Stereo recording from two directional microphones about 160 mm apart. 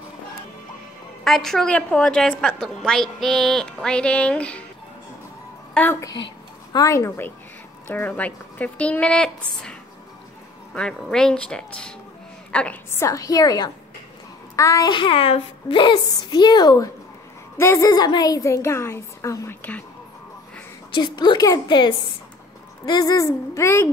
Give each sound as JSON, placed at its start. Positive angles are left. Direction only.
{"t": 1.2, "sound": "a woman's voice", "side_deg": 0}
{"t": 5.8, "sound": "a woman's voice", "side_deg": 15}
{"t": 10.7, "sound": "a woman's voice", "side_deg": 5}
{"t": 20.9, "sound": "a woman's voice", "side_deg": 30}